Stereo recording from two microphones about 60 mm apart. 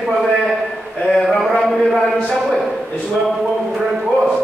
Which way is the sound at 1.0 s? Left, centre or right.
Centre.